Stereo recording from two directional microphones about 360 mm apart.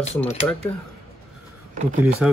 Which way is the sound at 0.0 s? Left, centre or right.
Centre.